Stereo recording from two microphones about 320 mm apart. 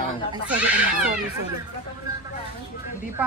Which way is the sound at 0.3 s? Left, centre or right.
Centre.